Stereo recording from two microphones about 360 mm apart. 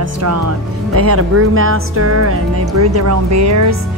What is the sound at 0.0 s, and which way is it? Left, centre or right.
Speech, right.